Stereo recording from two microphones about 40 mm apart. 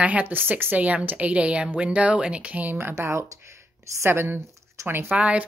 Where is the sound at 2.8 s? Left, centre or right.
Right.